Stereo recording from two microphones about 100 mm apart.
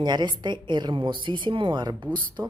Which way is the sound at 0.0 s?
45° right (ahead or behind).